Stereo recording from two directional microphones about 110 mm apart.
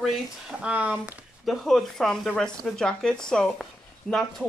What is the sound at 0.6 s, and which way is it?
Speech, 10° right (ahead or behind).